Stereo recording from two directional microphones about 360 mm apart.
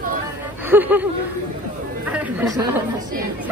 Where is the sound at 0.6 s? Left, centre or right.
Centre.